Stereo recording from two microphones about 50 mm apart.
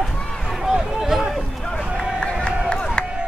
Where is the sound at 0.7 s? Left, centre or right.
Centre.